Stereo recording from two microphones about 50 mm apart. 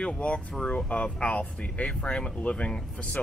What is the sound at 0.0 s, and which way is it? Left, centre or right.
Speech, left.